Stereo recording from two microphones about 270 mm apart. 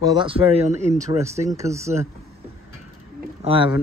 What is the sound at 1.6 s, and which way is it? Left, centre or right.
Speech, centre.